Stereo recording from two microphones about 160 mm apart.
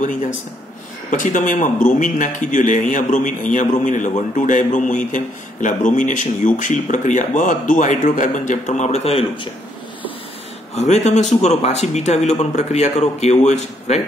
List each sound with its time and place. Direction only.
0.0 s a man's voice: 55° left (ahead or behind); by 9.5 s 35° left (ahead or behind)
10.7 s speech: 45° left (ahead or behind)